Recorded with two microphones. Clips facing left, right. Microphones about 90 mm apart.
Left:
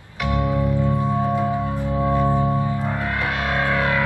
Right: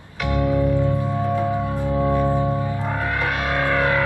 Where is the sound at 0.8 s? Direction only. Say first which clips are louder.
Left 1 dB; 20° left (ahead or behind).